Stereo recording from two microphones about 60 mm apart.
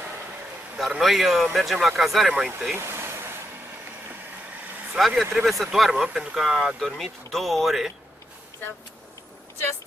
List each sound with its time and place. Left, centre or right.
0.7 s speech: centre
2.8 s vehicle: right
4.9 s speech: centre